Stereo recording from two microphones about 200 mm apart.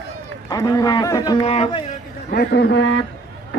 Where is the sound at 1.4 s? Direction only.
30° left (ahead or behind).